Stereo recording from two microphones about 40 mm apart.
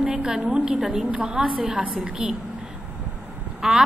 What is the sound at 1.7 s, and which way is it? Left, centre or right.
Speech, right.